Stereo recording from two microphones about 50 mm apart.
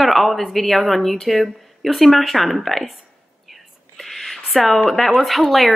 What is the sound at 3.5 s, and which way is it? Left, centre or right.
Whispering, centre.